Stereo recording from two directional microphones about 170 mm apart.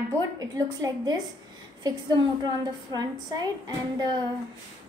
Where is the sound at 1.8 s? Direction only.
25° right (ahead or behind).